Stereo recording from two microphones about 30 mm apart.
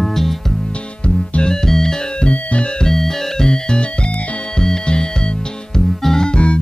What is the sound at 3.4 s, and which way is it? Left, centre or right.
Music, left.